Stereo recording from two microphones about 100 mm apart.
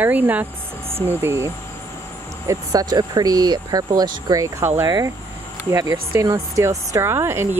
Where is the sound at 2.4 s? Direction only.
35° right (ahead or behind).